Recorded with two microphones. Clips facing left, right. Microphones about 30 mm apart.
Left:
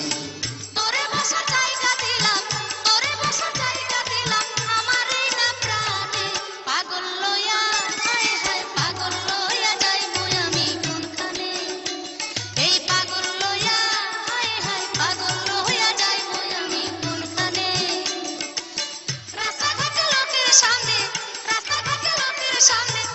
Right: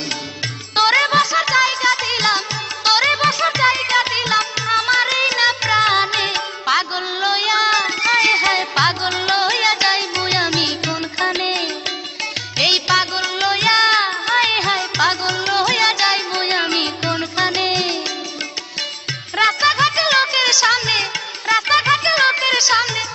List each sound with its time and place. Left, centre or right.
0.7 s music: right
3.1 s music: right
4.2 s music: right
6.8 s a sound: right
9.5 s music: right
11.2 s music: right
12.2 s music: right
16.3 s music: right
17.1 s music: right
19.3 s music: right
20.2 s music: right
20.8 s music: right
21.7 s music: right